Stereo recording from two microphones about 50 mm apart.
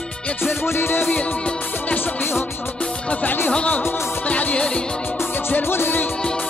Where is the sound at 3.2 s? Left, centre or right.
Left.